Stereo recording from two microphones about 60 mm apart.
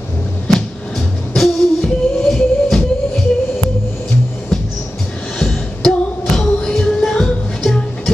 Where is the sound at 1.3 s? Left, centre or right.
Centre.